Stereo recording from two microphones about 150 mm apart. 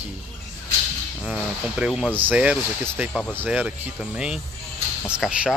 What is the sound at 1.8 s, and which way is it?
Speech, 5° right (ahead or behind).